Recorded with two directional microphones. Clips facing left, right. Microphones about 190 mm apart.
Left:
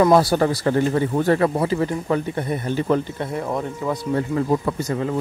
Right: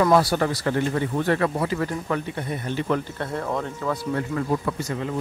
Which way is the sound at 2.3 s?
40° left (ahead or behind).